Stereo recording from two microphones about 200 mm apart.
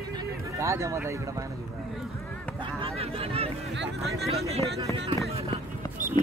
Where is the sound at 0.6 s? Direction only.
15° right (ahead or behind).